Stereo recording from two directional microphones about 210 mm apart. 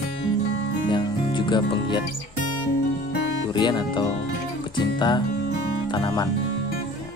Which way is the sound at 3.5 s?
20° left (ahead or behind).